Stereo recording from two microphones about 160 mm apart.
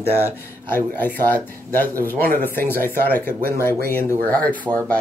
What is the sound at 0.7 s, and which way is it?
Speech, 10° left (ahead or behind).